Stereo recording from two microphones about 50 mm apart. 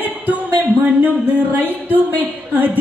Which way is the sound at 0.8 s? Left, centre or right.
Right.